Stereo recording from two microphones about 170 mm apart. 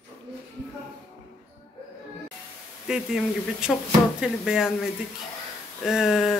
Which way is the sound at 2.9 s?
5° right (ahead or behind).